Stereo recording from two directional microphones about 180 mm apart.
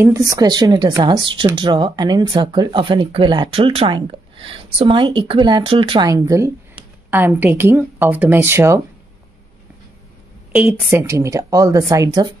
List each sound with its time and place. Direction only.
0.0 s speech: 20° right (ahead or behind)
10.5 s speech: 10° right (ahead or behind)